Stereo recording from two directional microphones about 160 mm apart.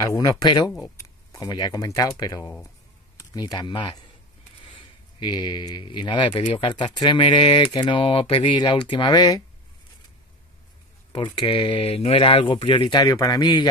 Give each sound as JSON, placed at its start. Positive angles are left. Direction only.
{"t": 0.0, "sound": "speech", "side_deg": 20}
{"t": 11.1, "sound": "speech", "side_deg": 30}